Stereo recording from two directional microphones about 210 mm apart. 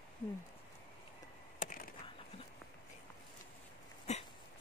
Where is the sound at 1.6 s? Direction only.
40° left (ahead or behind).